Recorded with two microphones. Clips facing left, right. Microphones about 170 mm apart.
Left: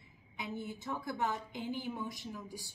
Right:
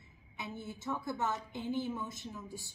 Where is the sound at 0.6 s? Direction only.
20° right (ahead or behind).